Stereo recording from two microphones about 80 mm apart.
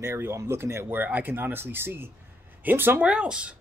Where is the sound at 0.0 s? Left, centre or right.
Right.